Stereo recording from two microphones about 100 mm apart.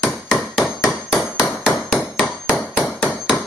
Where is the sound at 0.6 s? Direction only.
30° left (ahead or behind).